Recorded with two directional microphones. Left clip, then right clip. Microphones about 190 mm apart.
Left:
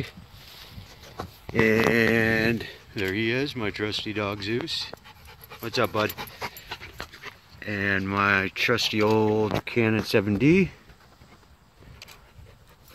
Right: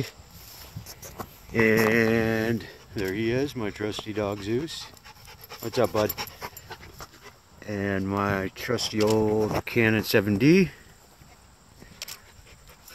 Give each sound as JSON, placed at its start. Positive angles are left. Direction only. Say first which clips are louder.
{"t": 1.5, "sound": "speech", "louder": "even", "side_deg": 10}
{"t": 1.9, "sound": "speech", "louder": "left 1 dB", "side_deg": 0}
{"t": 7.5, "sound": "speech", "louder": "left 3 dB", "side_deg": -10}
{"t": 8.6, "sound": "speech", "louder": "even", "side_deg": 5}